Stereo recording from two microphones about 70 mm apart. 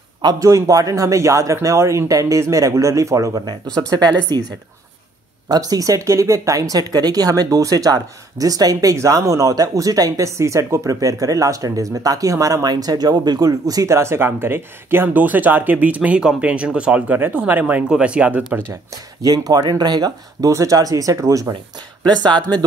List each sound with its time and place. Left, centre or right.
0.4 s speech: right
3.6 s speech: centre
3.9 s speech: right
7.4 s speech: right
8.9 s speech: right
13.5 s speech: right
17.8 s speech: centre
19.2 s speech: right
22.0 s speech: right